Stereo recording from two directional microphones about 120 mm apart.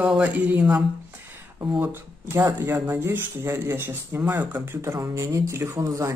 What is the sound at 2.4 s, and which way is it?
Speech, 20° right (ahead or behind).